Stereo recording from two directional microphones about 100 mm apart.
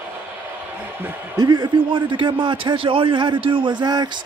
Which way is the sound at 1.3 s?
45° right (ahead or behind).